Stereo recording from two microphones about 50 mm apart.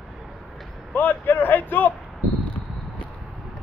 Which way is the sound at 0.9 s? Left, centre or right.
Left.